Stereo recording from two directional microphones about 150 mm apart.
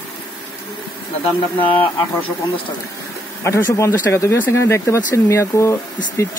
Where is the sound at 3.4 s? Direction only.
15° left (ahead or behind).